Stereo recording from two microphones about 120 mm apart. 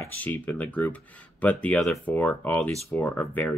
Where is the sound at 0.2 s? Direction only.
15° left (ahead or behind).